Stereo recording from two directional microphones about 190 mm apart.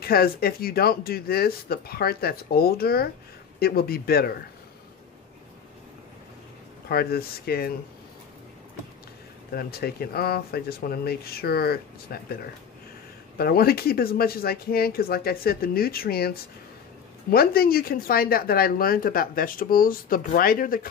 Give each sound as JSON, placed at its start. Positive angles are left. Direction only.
{"t": 0.0, "sound": "speech", "side_deg": 50}
{"t": 6.9, "sound": "speech", "side_deg": 55}
{"t": 9.5, "sound": "speech", "side_deg": 55}
{"t": 13.4, "sound": "speech", "side_deg": 55}